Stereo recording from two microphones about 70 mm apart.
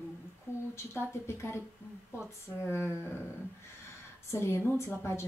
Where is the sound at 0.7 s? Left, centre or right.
Left.